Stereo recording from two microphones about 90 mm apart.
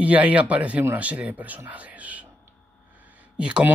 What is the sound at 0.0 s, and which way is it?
Speech, 15° right (ahead or behind).